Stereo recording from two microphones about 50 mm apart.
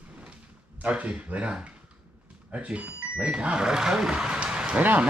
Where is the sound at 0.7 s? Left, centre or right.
Right; by 4.4 s centre.